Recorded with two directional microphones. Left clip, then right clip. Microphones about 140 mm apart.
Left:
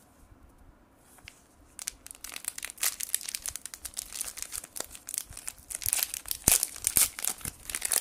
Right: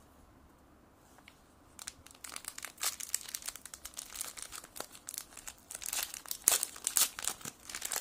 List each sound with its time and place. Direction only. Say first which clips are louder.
1.9 s crumpling: left 6 dB; 20° left (ahead or behind)
4.6 s crumpling: left 4 dB; 15° left (ahead or behind)